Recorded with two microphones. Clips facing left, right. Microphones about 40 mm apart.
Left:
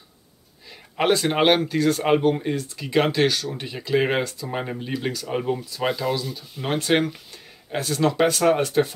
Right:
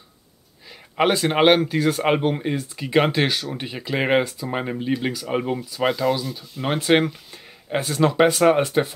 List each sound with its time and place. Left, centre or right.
0.9 s speech: centre